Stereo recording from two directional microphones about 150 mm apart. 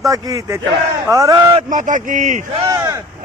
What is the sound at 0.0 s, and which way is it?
A man's voice, 20° right (ahead or behind).